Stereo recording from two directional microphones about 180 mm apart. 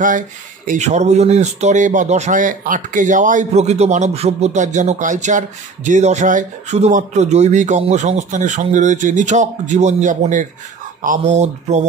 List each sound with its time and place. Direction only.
0.7 s speech: 40° right (ahead or behind)